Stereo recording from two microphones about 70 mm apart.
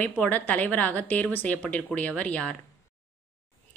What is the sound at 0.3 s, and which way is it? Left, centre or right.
A woman's voice, left.